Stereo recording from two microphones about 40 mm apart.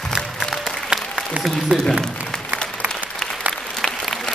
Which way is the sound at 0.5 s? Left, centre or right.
Centre.